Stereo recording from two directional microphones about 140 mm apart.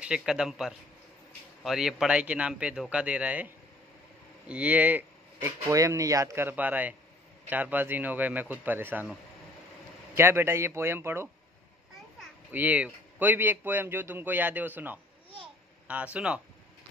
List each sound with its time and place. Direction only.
0.0 s a man's voice: 5° right (ahead or behind)
10.1 s speech: 15° right (ahead or behind)
12.4 s speech: 10° right (ahead or behind)